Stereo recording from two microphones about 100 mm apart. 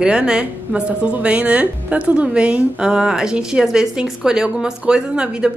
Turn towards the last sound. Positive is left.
turn(degrees=-10)  # may be behind; listen again after turning